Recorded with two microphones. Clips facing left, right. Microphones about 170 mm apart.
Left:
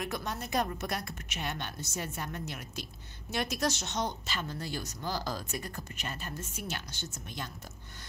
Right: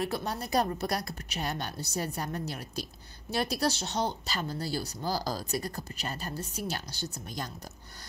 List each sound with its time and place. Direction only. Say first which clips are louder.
0.0 s a woman's voice: right 4 dB; 35° right (ahead or behind)